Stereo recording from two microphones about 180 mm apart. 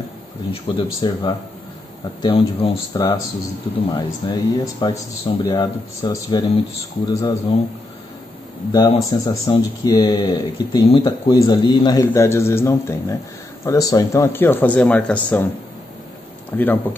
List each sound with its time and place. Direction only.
0.5 s speech: 25° left (ahead or behind)
8.7 s speech: 20° left (ahead or behind)
16.5 s speech: 10° left (ahead or behind)